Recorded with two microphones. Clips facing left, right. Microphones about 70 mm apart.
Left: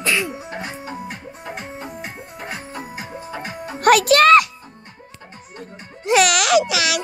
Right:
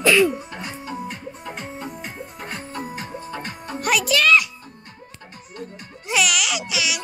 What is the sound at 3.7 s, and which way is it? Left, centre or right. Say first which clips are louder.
Music: left 8 dB; left.